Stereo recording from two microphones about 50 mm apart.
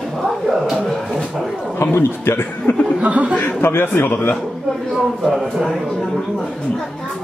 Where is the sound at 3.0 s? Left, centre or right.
Right.